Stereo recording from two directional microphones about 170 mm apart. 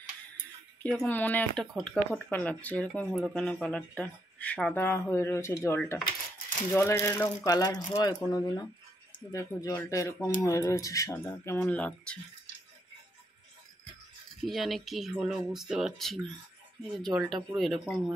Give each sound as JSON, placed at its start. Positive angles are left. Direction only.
{"t": 0.8, "sound": "speech", "side_deg": 10}
{"t": 14.4, "sound": "speech", "side_deg": 0}